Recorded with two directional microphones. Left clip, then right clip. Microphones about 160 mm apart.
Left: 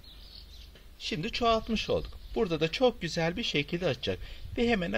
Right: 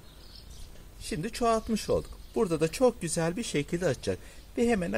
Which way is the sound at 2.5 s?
30° right (ahead or behind).